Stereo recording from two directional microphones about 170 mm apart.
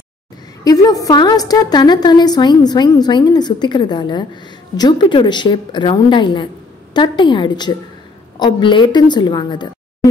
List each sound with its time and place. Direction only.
0.7 s a woman's voice: 20° left (ahead or behind)